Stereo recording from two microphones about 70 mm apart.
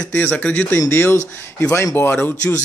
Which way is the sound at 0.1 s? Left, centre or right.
Centre.